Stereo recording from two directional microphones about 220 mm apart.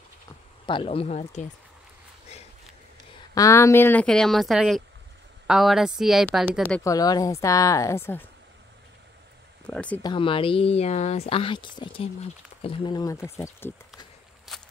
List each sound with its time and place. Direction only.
0.7 s speech: 25° left (ahead or behind)
3.3 s speech: 15° left (ahead or behind)
6.8 s speech: 15° left (ahead or behind)
9.7 s speech: 5° left (ahead or behind)
10.0 s speech: 25° left (ahead or behind)
14.5 s walk: centre (ahead or behind)